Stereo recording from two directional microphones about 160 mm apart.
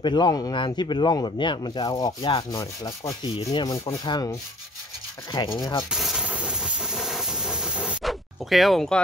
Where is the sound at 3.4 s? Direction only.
40° left (ahead or behind).